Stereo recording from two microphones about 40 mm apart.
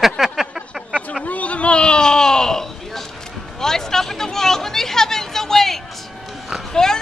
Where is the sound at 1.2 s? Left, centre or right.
Left; by 3.0 s centre.